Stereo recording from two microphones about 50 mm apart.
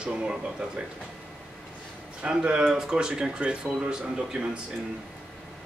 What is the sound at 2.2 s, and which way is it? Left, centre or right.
Speech, right.